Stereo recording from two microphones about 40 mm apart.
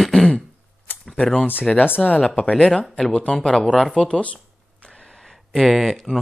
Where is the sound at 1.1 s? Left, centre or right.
Left.